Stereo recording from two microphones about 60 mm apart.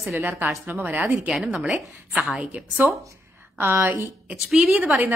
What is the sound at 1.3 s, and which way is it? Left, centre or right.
Speech, centre.